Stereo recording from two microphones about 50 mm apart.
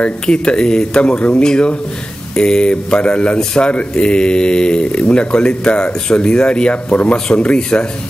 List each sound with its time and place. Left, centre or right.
0.0 s speech: centre